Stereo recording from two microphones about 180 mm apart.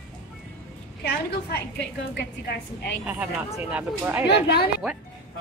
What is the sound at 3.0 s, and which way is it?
Speech, 10° right (ahead or behind).